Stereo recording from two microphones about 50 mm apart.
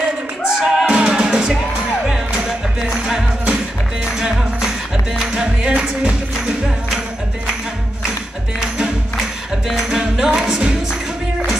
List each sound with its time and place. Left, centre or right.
0.4 s music: centre
3.1 s music: centre
8.5 s music: centre